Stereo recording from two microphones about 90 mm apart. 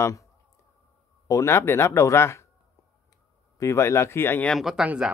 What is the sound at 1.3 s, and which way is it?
Speech, 30° left (ahead or behind).